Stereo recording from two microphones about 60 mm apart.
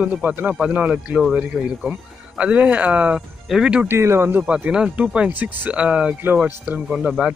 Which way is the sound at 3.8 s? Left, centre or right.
Right.